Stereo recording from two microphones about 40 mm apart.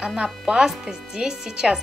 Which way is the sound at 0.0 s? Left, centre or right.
Right.